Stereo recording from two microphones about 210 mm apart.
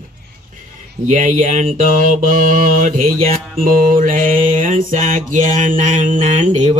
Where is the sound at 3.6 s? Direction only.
40° right (ahead or behind).